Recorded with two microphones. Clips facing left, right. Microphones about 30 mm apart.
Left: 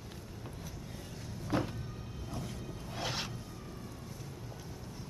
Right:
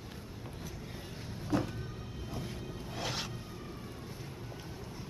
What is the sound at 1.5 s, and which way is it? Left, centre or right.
Power windows, left.